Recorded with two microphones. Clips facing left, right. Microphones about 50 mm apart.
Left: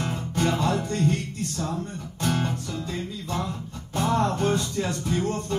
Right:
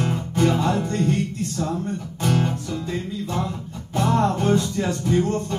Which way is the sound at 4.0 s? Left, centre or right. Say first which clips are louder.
Right 3 dB; centre.